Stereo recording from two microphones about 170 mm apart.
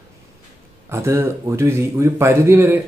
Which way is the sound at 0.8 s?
15° right (ahead or behind).